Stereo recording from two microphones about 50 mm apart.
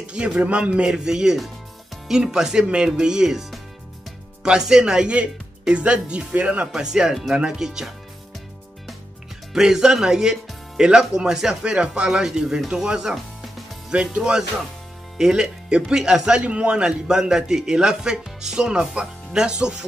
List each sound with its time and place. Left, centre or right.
0.0 s speech: right
5.1 s speech: right
6.7 s speech: centre
9.5 s speech: centre
13.1 s music: centre
14.1 s speech: centre